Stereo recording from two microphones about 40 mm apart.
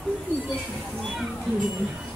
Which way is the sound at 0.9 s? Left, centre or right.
Centre.